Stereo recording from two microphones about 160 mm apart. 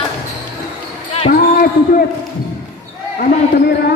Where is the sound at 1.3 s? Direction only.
60° left (ahead or behind).